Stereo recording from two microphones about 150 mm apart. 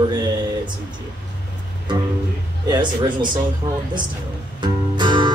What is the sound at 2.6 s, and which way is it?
Speech, 30° right (ahead or behind).